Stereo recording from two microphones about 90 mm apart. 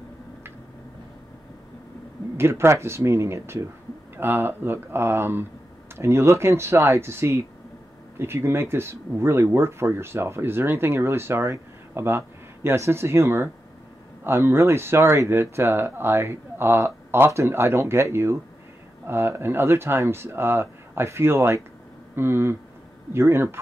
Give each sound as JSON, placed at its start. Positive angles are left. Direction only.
{"t": 2.3, "sound": "speech", "side_deg": -30}